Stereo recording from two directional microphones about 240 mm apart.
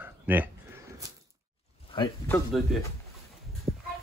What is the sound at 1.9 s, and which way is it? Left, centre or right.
Speech, centre.